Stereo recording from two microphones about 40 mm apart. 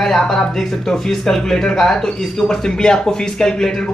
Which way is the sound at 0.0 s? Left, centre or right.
Centre.